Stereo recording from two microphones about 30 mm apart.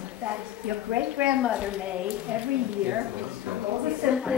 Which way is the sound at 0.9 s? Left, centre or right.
Right.